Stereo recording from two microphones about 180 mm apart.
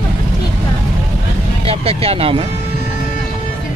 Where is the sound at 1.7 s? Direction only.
35° right (ahead or behind).